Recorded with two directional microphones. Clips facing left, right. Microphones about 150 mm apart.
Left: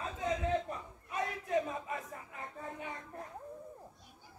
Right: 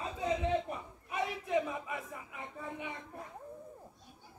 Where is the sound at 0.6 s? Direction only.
10° right (ahead or behind).